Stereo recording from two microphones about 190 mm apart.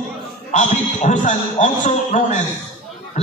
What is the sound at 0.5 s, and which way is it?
A man's voice, 40° left (ahead or behind).